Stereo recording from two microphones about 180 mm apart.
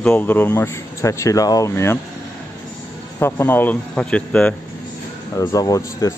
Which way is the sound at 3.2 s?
15° left (ahead or behind).